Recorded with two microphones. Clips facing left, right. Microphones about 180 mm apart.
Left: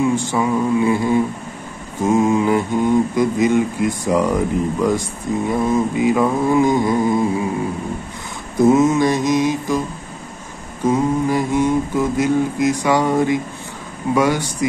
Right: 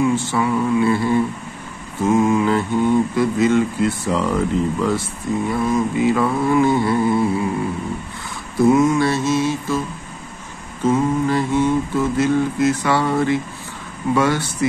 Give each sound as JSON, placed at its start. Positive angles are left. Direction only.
{"t": 0.1, "sound": "mantra", "side_deg": 15}
{"t": 8.5, "sound": "mantra", "side_deg": 25}